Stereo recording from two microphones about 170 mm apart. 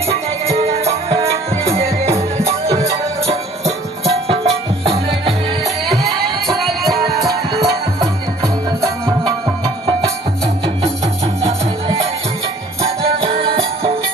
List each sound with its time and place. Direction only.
0.1 s music: 35° right (ahead or behind)
5.9 s music: centre (ahead or behind)
7.2 s music: 20° right (ahead or behind)
13.2 s music: 35° right (ahead or behind)